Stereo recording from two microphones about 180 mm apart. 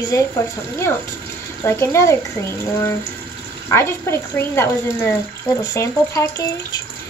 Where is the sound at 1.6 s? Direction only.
15° left (ahead or behind).